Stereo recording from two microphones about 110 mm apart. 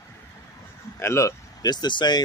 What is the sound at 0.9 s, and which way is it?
Speech, 25° left (ahead or behind).